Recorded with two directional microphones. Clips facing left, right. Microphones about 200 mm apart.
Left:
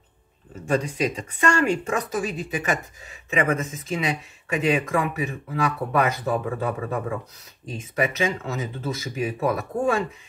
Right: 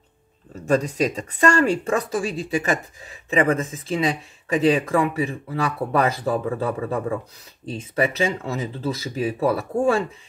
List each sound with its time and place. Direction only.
0.7 s speech: 40° right (ahead or behind)